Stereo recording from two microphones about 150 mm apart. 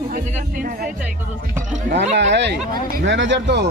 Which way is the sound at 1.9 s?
10° left (ahead or behind).